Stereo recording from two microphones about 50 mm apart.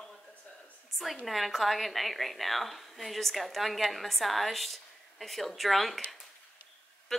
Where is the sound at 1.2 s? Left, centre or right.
Centre.